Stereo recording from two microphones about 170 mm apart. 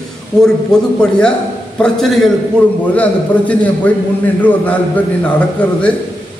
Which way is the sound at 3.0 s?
10° left (ahead or behind).